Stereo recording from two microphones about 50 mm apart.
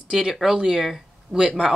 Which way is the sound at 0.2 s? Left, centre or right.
Centre.